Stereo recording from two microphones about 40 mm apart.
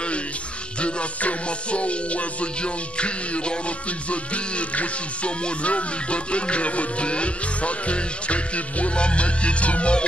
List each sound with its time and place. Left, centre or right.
0.7 s music: left